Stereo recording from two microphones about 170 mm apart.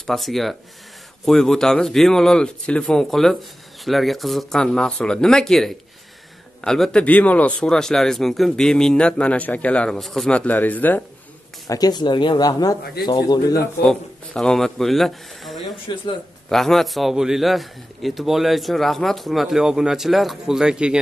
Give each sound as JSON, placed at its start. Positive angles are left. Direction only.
{"t": 0.0, "sound": "a man's voice", "side_deg": 0}
{"t": 11.6, "sound": "speech", "side_deg": 20}
{"t": 13.8, "sound": "speech", "side_deg": 5}
{"t": 15.9, "sound": "speech", "side_deg": 25}
{"t": 16.4, "sound": "a man's voice", "side_deg": 0}